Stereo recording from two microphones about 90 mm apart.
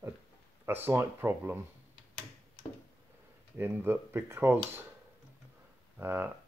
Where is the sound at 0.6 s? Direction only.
25° right (ahead or behind).